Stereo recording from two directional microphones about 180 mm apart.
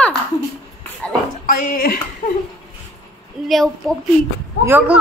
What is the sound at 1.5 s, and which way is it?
Speech, 55° left (ahead or behind).